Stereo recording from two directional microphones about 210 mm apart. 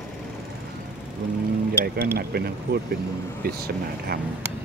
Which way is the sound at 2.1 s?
50° right (ahead or behind).